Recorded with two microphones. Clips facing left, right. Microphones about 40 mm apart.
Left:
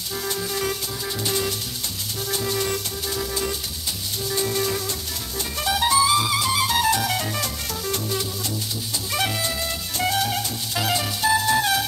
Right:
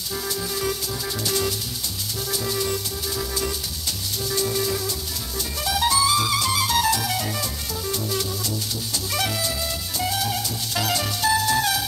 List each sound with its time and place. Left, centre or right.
0.3 s music: left
2.5 s music: left
4.6 s music: left
5.8 s music: left
9.1 s music: left
9.9 s music: left
10.7 s music: centre